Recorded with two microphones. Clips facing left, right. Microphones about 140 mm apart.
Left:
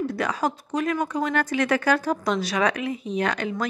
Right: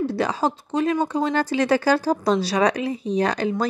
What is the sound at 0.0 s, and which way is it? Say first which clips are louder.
Speech: right 3 dB; 30° right (ahead or behind).